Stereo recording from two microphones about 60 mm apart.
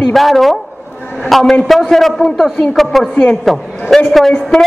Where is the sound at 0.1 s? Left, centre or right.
Centre.